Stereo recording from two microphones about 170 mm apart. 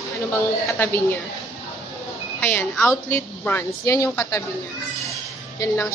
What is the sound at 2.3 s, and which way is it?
A woman's voice, 10° left (ahead or behind).